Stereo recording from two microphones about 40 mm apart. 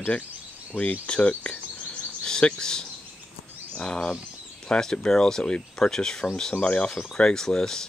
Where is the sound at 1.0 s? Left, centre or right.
Left.